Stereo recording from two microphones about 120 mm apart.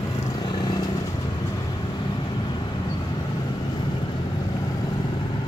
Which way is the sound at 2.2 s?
40° left (ahead or behind).